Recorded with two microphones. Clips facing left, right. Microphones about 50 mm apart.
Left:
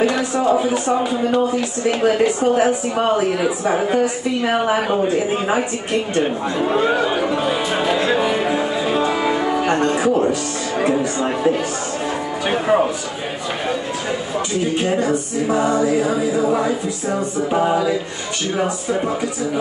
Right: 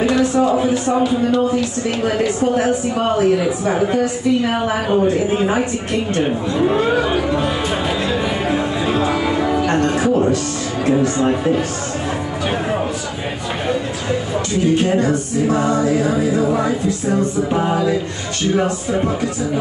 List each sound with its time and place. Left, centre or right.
0.1 s a sound: centre
1.0 s speech: left
2.0 s music: centre
7.2 s music: centre
9.3 s music: left
9.9 s music: centre
14.8 s music: centre
16.0 s a capella: centre